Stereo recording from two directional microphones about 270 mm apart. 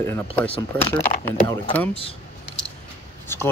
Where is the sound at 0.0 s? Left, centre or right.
Centre.